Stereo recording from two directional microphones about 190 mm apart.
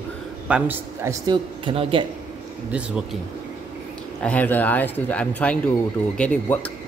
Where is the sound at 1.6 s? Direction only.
25° right (ahead or behind).